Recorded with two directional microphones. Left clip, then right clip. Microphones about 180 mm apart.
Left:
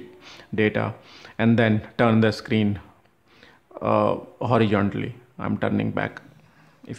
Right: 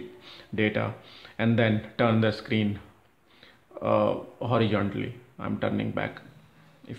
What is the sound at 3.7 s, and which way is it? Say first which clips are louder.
Speech: left 3 dB; 35° left (ahead or behind).